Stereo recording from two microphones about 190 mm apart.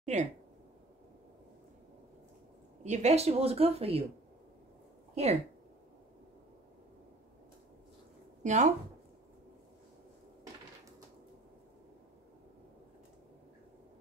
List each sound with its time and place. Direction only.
0.0 s speech: 40° right (ahead or behind)
2.8 s speech: 35° right (ahead or behind)
5.1 s a woman's voice: 35° right (ahead or behind)
8.5 s speech: 40° right (ahead or behind)